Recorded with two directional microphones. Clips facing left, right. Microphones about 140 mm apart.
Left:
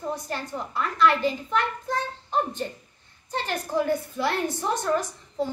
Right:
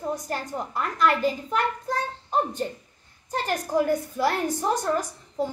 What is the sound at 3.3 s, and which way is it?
A woman's voice, 40° right (ahead or behind).